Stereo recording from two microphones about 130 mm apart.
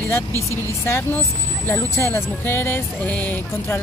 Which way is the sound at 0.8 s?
20° left (ahead or behind).